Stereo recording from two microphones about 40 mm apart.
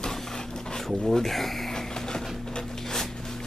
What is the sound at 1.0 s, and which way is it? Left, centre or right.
Speech, centre.